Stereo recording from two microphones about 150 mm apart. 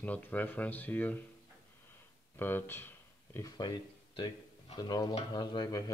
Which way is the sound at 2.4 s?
15° left (ahead or behind).